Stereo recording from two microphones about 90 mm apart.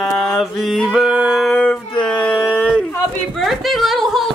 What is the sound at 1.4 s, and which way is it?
Howl, 10° left (ahead or behind).